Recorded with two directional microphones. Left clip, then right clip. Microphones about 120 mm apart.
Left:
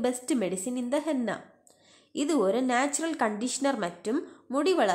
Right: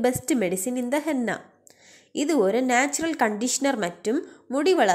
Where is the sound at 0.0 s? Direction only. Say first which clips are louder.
Right 5 dB; 25° right (ahead or behind).